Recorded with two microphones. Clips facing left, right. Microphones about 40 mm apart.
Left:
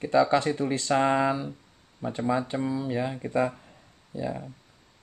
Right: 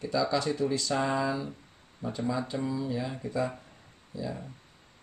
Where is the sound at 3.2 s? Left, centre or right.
Left.